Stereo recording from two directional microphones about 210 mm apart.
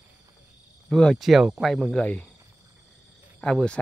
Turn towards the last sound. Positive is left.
turn(degrees=5)  # may be behind; listen again after turning